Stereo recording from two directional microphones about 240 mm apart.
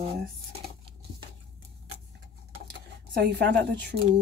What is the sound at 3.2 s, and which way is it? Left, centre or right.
Speech, right.